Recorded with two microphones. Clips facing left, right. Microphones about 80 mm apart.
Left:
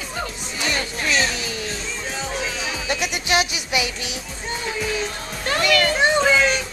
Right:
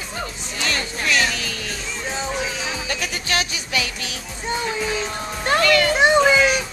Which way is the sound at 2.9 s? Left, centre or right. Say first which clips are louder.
Left 5 dB; centre.